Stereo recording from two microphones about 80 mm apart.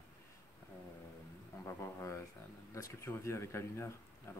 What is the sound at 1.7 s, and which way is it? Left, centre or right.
Speech, left.